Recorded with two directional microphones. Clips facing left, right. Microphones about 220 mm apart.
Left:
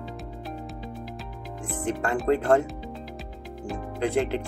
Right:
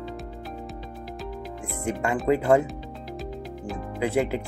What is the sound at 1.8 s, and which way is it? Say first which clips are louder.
Speech: right 1 dB; 10° right (ahead or behind).